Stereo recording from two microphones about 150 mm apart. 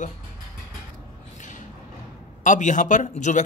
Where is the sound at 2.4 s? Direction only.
55° left (ahead or behind).